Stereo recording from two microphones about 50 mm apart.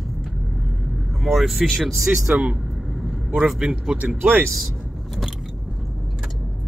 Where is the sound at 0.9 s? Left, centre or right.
Centre.